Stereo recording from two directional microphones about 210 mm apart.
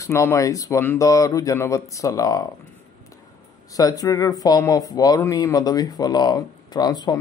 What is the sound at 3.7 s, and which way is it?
Speech, 15° left (ahead or behind).